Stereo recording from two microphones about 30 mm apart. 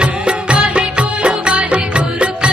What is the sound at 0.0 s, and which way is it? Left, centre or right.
Music, right.